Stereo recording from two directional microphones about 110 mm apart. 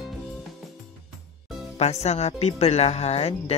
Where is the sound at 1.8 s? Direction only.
80° left.